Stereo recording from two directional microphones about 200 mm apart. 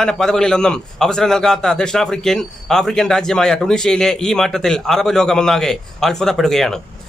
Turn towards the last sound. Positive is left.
turn(degrees=0)  # may be behind; listen again after turning